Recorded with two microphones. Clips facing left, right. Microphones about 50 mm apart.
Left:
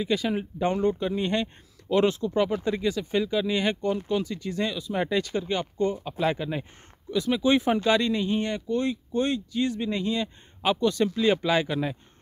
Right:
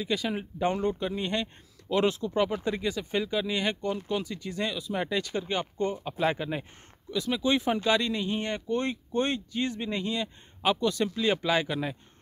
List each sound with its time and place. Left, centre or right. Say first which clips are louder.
0.0 s speech: left 4 dB; centre
4.2 s speech: left 4 dB; centre
7.1 s speech: left 4 dB; centre
8.4 s speech: left 3 dB; right
8.6 s speech: left 3 dB; right
9.8 s speech: left 3 dB; centre